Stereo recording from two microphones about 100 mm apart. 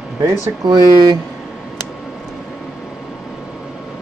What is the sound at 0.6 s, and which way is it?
Speech, 45° right (ahead or behind).